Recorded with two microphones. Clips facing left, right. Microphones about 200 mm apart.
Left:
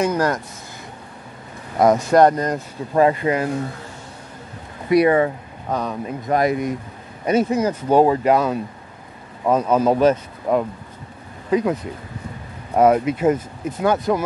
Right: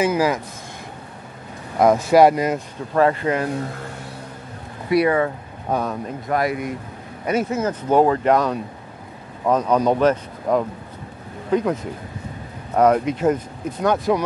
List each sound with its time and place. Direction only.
0.0 s speech: 5° right (ahead or behind)
1.8 s speech: centre (ahead or behind)
2.9 s speech: 15° left (ahead or behind)
4.9 s speech: 20° left (ahead or behind)
5.7 s speech: 5° right (ahead or behind)
6.2 s speech: 20° left (ahead or behind); by 14.2 s centre (ahead or behind)